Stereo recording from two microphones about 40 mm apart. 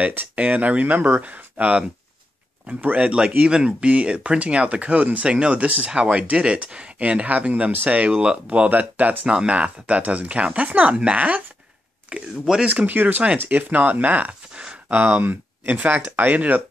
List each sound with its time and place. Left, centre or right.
0.0 s speech: right
8.6 s speech: right
12.6 s speech: right
14.5 s a sound: right
14.9 s speech: right
15.7 s speech: right